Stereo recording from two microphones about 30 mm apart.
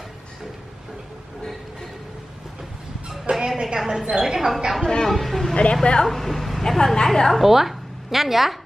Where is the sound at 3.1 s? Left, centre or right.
Centre.